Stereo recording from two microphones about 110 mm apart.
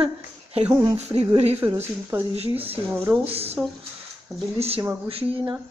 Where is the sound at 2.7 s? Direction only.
15° right (ahead or behind).